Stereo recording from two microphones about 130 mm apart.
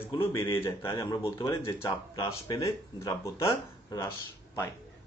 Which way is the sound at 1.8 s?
35° left (ahead or behind).